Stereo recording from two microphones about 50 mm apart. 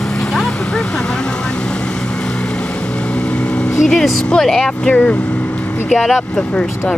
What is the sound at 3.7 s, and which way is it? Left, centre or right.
Vehicle, centre.